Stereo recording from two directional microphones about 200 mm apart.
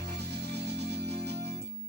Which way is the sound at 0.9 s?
55° right (ahead or behind).